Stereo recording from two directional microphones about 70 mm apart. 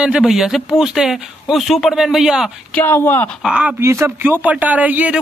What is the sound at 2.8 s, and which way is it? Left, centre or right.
Speech, left.